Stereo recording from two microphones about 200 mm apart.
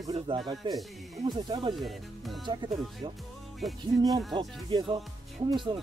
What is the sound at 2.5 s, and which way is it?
Speech, 25° right (ahead or behind).